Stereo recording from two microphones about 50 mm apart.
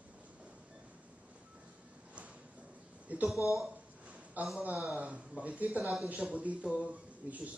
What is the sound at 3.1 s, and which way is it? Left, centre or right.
Speech, right.